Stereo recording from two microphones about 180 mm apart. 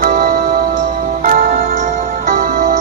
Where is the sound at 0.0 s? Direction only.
50° right (ahead or behind).